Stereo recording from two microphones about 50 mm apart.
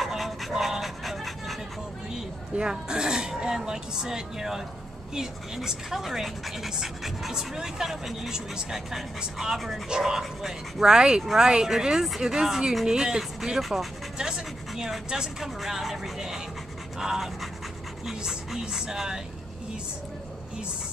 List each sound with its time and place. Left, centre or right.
0.0 s a sound: centre
2.1 s speech: centre
14.1 s speech: centre